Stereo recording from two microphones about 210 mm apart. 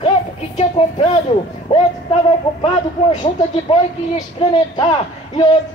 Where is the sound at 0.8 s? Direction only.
30° left (ahead or behind).